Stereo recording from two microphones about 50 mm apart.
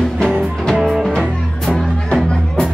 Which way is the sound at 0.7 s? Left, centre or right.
Centre.